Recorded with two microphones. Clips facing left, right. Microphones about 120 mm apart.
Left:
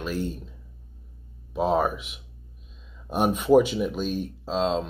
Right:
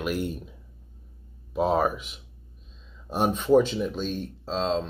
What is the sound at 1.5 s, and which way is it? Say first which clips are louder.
Speech: even; centre (ahead or behind).